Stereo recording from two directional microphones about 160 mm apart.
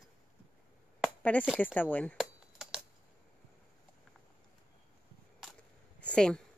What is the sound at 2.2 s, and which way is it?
Computer keyboard, centre (ahead or behind).